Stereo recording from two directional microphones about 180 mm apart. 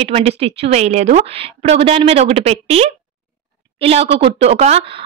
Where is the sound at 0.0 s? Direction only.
35° right (ahead or behind).